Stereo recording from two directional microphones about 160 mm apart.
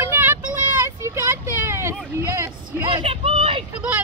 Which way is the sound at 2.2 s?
20° right (ahead or behind).